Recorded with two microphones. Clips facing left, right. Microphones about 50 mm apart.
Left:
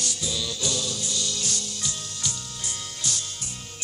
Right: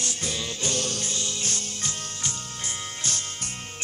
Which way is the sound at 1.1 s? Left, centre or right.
Right.